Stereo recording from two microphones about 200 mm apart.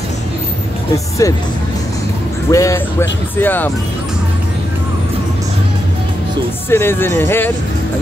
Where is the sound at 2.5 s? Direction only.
15° left (ahead or behind).